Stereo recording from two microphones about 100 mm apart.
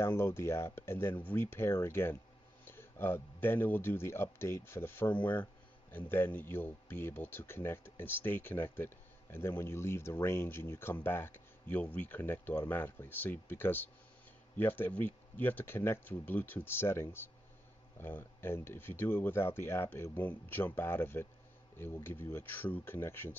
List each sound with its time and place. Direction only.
0.0 s speech: 25° left (ahead or behind)